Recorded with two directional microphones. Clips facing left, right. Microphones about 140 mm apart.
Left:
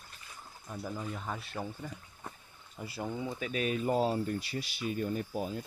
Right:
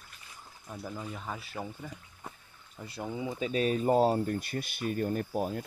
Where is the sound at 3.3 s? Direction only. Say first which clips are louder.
Right 7 dB; 30° right (ahead or behind); by 5.6 s 55° right (ahead or behind).